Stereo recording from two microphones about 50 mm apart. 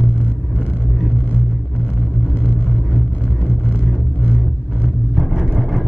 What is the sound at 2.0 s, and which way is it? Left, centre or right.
Vehicle, left.